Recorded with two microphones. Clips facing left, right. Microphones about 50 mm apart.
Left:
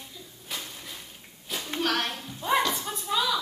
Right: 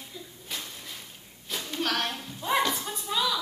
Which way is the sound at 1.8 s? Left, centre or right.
Centre.